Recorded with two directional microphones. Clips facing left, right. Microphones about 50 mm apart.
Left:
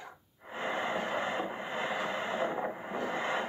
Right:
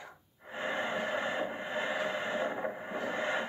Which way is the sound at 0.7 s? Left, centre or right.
Centre.